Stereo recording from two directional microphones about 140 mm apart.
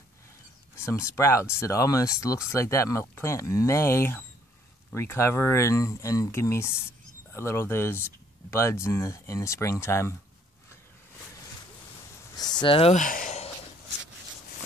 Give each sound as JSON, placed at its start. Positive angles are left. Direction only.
{"t": 0.7, "sound": "speech", "side_deg": 20}
{"t": 12.4, "sound": "speech", "side_deg": 30}
{"t": 12.9, "sound": "a sound", "side_deg": 70}